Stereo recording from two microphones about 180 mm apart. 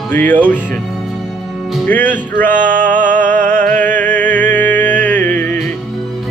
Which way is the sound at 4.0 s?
10° left (ahead or behind).